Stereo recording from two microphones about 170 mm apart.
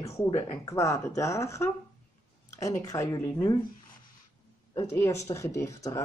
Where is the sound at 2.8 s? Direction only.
20° left (ahead or behind).